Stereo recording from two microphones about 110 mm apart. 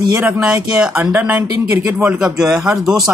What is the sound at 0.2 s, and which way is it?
Speech, 10° right (ahead or behind).